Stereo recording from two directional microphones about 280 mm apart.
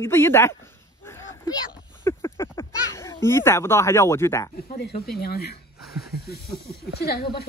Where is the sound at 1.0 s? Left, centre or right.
Centre.